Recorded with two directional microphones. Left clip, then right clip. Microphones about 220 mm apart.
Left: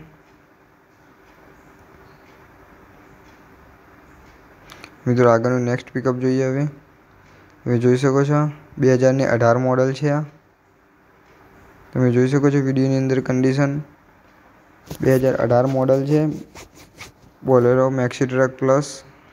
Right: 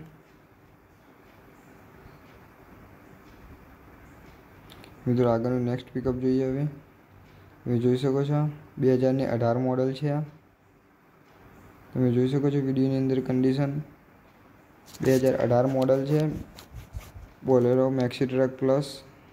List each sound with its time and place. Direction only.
4.6 s speech: 15° left (ahead or behind)
11.9 s speech: 15° left (ahead or behind)
15.0 s speech: 15° left (ahead or behind)
17.5 s speech: 10° left (ahead or behind)